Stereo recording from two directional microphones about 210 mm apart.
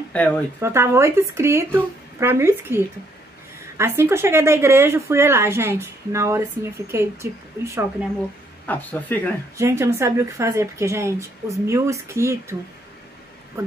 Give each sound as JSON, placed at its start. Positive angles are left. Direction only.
{"t": 0.1, "sound": "speech", "side_deg": 5}
{"t": 0.6, "sound": "speech", "side_deg": -10}
{"t": 8.6, "sound": "speech", "side_deg": 10}
{"t": 9.6, "sound": "speech", "side_deg": -15}